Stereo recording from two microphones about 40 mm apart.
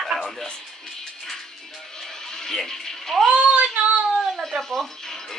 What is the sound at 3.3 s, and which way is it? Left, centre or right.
Child singing, right.